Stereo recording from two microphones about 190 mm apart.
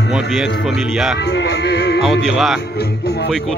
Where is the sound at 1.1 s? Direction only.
65° left (ahead or behind).